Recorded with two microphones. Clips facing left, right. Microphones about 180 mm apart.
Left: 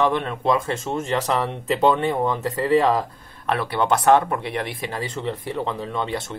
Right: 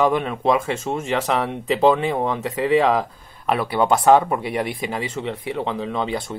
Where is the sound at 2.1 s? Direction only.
30° right (ahead or behind).